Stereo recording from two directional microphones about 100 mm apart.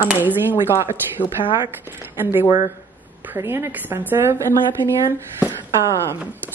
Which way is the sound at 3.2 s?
25° right (ahead or behind).